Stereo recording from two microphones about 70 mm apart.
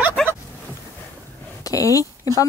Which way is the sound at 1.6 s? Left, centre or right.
Left.